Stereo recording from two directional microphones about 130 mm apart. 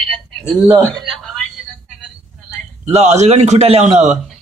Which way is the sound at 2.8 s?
60° right (ahead or behind).